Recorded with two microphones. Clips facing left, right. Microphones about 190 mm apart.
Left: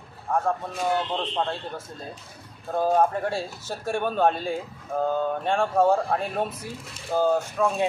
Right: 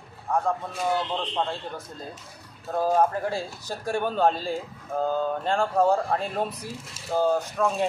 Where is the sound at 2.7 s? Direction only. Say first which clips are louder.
Left 1 dB; 5° right (ahead or behind).